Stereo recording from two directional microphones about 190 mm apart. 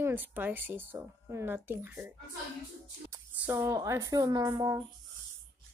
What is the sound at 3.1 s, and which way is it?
Speech, 10° right (ahead or behind).